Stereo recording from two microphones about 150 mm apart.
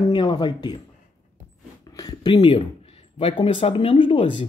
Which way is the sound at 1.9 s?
25° left (ahead or behind).